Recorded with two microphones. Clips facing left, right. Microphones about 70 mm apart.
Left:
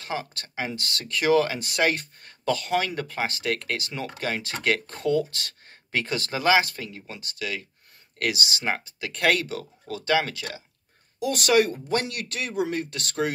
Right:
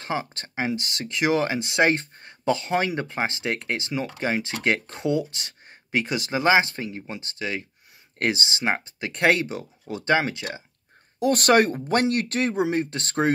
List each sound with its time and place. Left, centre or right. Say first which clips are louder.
0.0 s speech: right 3 dB; right
11.1 s speech: right 3 dB; right